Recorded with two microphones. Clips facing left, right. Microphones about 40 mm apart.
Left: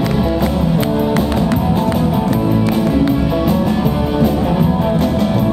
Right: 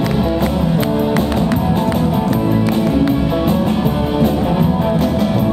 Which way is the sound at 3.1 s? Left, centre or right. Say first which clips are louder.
Even; centre.